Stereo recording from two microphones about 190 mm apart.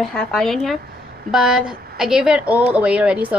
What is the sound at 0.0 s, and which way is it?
A woman's voice, centre (ahead or behind).